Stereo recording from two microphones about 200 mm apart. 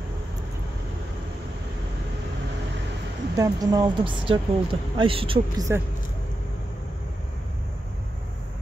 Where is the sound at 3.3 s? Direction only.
15° right (ahead or behind).